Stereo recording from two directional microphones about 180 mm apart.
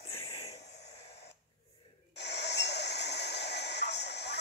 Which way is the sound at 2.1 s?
70° left (ahead or behind).